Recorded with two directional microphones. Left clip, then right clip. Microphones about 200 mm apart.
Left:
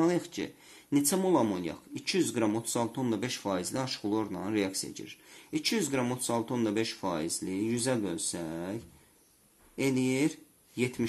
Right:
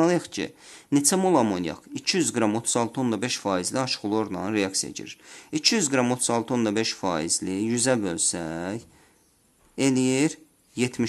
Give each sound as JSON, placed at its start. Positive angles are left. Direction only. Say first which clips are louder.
{"t": 0.0, "sound": "speech", "louder": "right 6 dB", "side_deg": -35}